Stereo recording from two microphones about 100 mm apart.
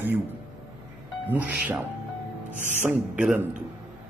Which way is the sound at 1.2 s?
15° right (ahead or behind).